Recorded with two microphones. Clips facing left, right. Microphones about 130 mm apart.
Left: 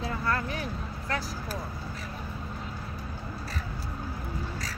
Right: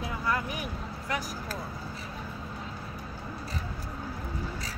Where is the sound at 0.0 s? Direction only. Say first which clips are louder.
Left 1 dB; 15° right (ahead or behind).